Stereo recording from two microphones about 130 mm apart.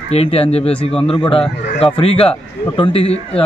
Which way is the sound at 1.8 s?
45° left (ahead or behind).